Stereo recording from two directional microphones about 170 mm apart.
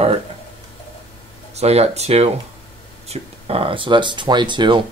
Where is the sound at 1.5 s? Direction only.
40° right (ahead or behind).